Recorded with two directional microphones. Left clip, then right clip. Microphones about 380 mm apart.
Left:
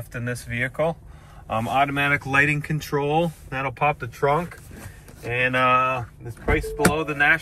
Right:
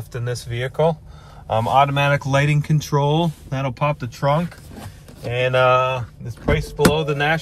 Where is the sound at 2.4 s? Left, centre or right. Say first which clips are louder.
Left 2 dB; centre.